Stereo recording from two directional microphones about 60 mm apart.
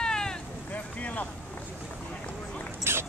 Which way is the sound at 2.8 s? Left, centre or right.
Right.